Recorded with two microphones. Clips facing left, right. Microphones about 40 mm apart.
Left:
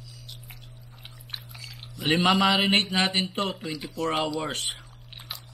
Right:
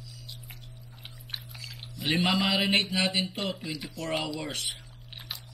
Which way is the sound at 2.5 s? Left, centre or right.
Left.